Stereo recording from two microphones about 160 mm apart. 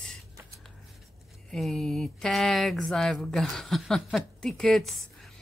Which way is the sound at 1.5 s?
5° left (ahead or behind).